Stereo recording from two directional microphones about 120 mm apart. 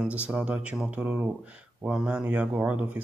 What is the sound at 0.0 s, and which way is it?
Speech, 5° right (ahead or behind).